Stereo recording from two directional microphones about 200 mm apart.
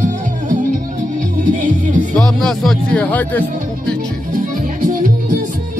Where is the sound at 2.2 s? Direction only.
5° left (ahead or behind).